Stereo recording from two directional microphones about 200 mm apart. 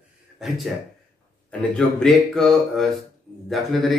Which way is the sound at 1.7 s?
Centre (ahead or behind).